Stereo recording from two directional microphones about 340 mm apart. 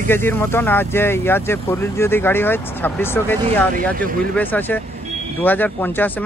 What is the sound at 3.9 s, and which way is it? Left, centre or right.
Speech, right.